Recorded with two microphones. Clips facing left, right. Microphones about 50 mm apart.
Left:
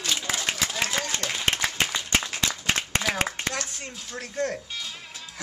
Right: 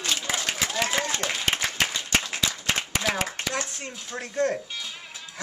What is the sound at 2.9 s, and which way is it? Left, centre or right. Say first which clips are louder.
Clapping: even; left.